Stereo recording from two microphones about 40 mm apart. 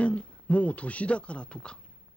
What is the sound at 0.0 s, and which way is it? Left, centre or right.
Speech, left.